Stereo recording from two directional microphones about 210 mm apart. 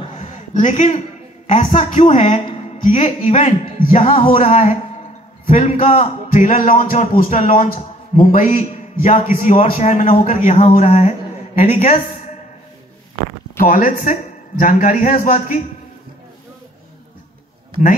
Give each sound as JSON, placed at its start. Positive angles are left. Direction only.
{"t": 0.0, "sound": "a sound", "side_deg": 35}
{"t": 1.5, "sound": "a man's voice", "side_deg": 35}
{"t": 4.2, "sound": "a man's voice", "side_deg": 25}
{"t": 13.6, "sound": "a man's voice", "side_deg": 40}